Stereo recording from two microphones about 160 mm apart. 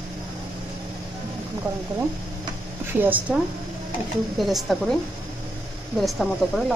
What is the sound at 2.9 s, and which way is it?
Speech, 10° right (ahead or behind).